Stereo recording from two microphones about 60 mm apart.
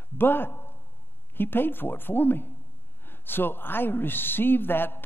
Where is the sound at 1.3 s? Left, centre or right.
Left.